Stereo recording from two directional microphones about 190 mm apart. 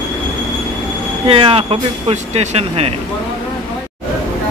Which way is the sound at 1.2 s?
30° right (ahead or behind).